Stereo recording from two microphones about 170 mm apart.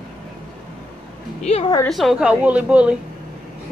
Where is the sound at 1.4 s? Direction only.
35° left (ahead or behind).